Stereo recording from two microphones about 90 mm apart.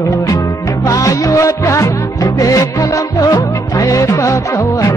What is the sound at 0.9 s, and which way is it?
Music, 35° left (ahead or behind).